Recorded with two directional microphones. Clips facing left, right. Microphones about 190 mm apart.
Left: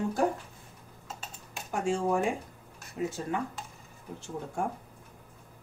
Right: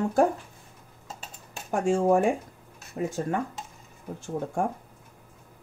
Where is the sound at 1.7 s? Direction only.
50° right (ahead or behind).